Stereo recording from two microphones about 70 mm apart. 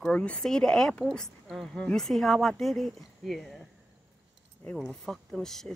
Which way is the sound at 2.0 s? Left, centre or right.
Centre.